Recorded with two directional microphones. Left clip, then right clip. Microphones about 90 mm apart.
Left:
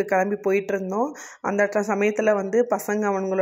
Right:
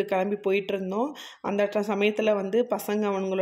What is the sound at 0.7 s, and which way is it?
Speech, 10° left (ahead or behind).